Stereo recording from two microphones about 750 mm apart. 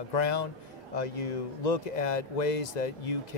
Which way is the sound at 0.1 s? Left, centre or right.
Left.